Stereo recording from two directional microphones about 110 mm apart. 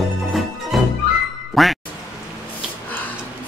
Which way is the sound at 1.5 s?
Centre (ahead or behind).